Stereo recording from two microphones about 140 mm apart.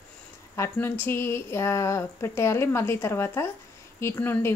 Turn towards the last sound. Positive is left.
turn(degrees=15)  # may be behind; listen again after turning